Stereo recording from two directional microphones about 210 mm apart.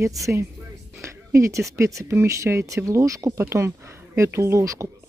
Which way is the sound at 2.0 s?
15° right (ahead or behind).